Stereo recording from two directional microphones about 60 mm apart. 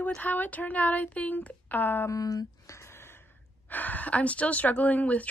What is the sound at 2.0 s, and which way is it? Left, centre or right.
Speech, left.